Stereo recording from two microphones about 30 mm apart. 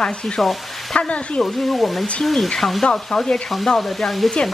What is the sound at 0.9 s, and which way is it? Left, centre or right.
Speech, left.